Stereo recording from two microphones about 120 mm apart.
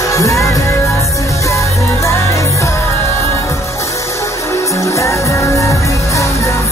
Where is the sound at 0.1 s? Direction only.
25° left (ahead or behind).